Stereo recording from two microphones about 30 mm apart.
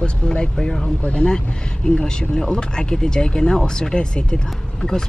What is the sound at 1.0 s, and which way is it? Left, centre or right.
Speech, left.